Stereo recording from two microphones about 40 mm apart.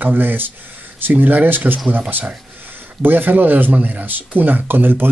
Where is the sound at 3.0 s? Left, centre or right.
Right.